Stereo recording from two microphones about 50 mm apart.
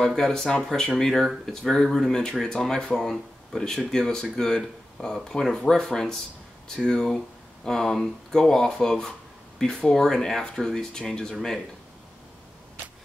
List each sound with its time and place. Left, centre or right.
0.0 s speech: centre